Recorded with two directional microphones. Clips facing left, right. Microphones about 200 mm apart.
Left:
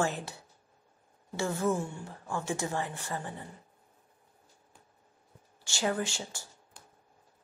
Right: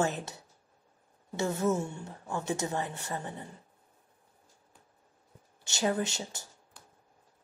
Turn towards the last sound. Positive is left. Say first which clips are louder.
# right 1 dB
turn(degrees=-20)  # may be behind; listen again after turning